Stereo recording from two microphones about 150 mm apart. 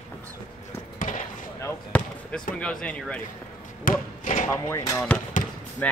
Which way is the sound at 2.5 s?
5° left (ahead or behind).